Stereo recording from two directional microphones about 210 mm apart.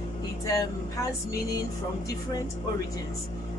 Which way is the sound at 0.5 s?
15° left (ahead or behind).